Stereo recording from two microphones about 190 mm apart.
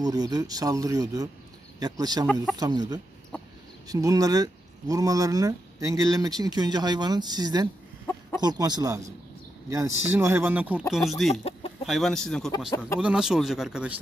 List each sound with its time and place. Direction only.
0.0 s speech: 20° right (ahead or behind); by 13.9 s 5° right (ahead or behind)